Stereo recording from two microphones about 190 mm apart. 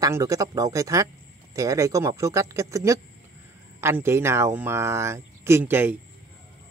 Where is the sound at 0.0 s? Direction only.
15° right (ahead or behind).